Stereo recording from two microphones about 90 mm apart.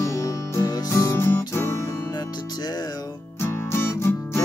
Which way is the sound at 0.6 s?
40° left (ahead or behind).